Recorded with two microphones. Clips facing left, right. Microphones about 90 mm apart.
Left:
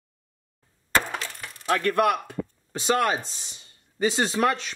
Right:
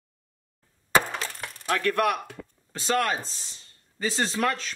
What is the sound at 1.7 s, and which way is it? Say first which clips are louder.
Speech: left 2 dB; 5° left (ahead or behind).